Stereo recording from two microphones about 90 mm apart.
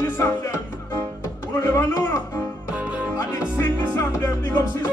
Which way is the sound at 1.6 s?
35° left (ahead or behind).